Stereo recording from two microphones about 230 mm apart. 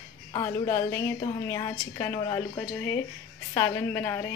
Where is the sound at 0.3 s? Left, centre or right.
Centre.